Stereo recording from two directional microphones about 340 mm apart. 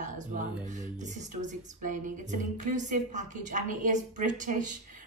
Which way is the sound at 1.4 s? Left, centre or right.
Right.